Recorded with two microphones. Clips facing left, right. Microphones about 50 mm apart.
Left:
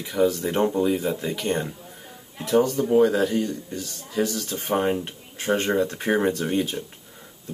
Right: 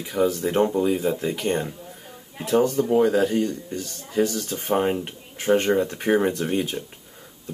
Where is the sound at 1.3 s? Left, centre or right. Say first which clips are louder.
Right 1 dB; centre.